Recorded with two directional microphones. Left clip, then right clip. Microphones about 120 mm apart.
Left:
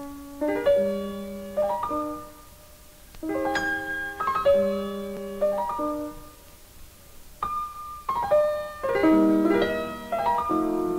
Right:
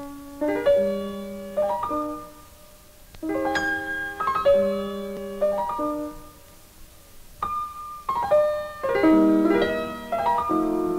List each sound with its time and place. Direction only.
0.0 s music: 30° right (ahead or behind)
7.4 s music: 35° right (ahead or behind)